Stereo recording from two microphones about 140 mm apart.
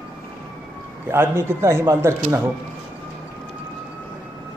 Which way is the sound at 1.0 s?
15° right (ahead or behind).